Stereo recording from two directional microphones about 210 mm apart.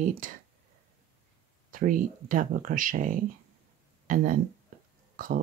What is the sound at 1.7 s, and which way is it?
Speech, 40° right (ahead or behind).